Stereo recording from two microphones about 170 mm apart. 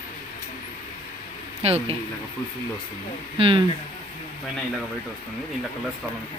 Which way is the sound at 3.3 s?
30° right (ahead or behind).